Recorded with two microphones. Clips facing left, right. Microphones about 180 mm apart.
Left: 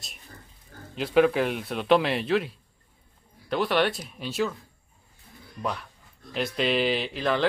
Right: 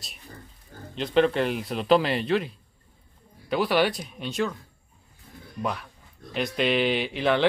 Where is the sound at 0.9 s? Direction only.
5° left (ahead or behind).